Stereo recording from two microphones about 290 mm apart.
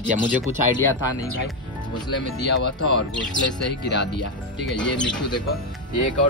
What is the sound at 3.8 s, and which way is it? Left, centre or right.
Speech, left.